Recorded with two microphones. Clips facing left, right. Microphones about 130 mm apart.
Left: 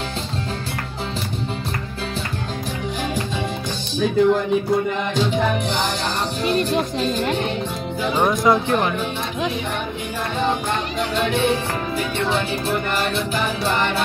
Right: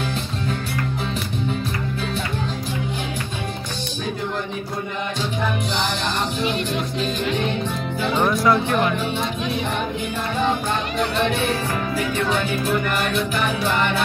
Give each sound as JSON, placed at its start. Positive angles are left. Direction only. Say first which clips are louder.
{"t": 8.1, "sound": "speech", "louder": "left 1 dB", "side_deg": 15}
{"t": 12.3, "sound": "music", "louder": "even", "side_deg": 30}